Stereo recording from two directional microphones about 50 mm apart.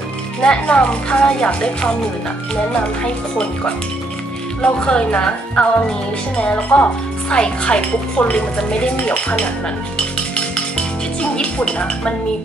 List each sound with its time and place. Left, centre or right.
0.4 s speech: left
4.6 s speech: left
11.3 s speech: centre